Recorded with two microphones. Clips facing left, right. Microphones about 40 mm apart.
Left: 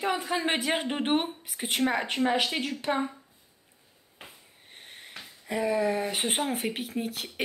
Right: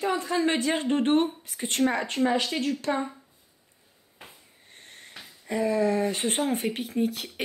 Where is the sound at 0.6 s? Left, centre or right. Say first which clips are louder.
Right 3 dB; centre.